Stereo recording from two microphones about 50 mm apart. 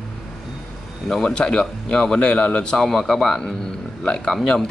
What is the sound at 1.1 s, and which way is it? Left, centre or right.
A man's voice, centre.